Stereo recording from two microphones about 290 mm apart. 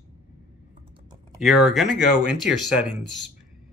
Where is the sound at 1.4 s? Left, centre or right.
Centre.